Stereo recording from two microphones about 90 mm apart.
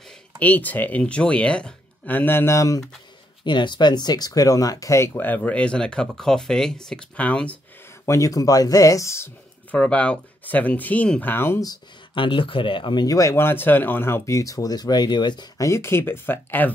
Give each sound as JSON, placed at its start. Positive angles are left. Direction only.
{"t": 0.4, "sound": "speech", "side_deg": 20}
{"t": 3.4, "sound": "speech", "side_deg": 60}
{"t": 5.1, "sound": "speech", "side_deg": 20}
{"t": 8.0, "sound": "speech", "side_deg": 40}
{"t": 9.7, "sound": "speech", "side_deg": 15}
{"t": 12.2, "sound": "speech", "side_deg": 70}
{"t": 13.0, "sound": "speech", "side_deg": 40}
{"t": 15.5, "sound": "speech", "side_deg": 35}